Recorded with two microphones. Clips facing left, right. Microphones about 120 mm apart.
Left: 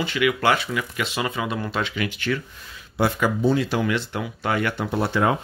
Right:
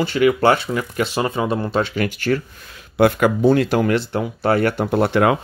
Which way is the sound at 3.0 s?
60° right (ahead or behind).